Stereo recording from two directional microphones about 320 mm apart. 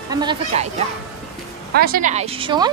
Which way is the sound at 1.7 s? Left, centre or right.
Right.